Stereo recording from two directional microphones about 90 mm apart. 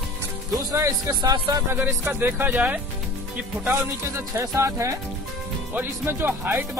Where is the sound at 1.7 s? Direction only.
20° right (ahead or behind).